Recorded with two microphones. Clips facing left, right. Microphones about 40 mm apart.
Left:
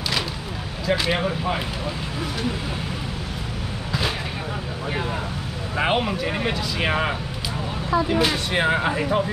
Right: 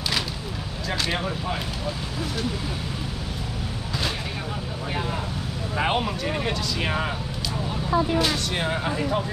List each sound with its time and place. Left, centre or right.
0.8 s speech: centre
5.8 s speech: centre
8.2 s speech: left